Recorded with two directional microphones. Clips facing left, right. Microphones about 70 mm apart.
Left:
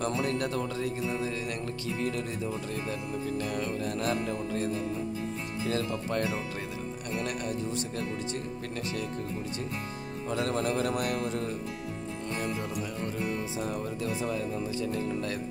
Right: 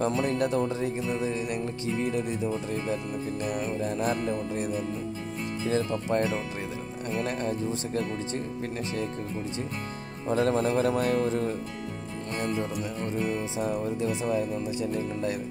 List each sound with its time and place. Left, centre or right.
0.0 s music: right
10.2 s music: right
12.5 s music: right